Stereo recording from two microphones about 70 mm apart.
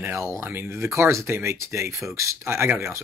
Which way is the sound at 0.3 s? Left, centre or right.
Right.